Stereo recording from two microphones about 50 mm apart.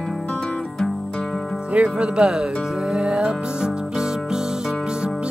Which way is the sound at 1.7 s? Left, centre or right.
Right.